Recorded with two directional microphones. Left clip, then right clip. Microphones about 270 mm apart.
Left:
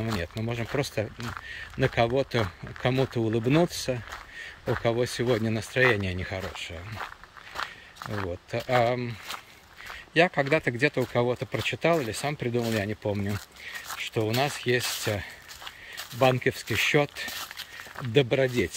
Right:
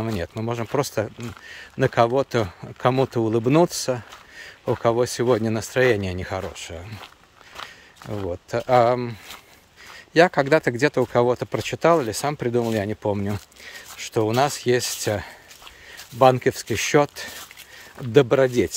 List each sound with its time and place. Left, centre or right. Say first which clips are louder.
0.4 s speech: right 8 dB; centre
8.3 s speech: right 8 dB; centre
10.1 s speech: right 6 dB; centre